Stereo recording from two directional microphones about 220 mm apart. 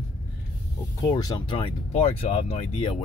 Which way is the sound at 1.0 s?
15° left (ahead or behind).